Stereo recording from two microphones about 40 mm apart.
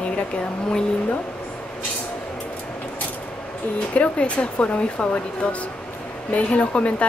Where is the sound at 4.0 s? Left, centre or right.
Left.